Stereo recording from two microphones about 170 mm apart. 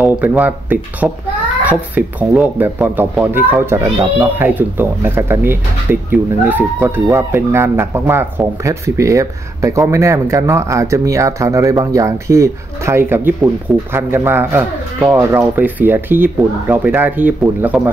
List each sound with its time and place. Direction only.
0.0 s speech: 10° right (ahead or behind)